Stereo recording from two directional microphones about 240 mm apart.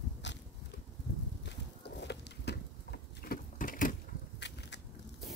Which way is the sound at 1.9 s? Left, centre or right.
Left.